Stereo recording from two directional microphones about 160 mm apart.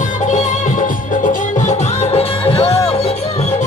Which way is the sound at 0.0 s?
50° left (ahead or behind).